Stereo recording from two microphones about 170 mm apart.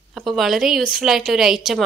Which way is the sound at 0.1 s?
Centre (ahead or behind).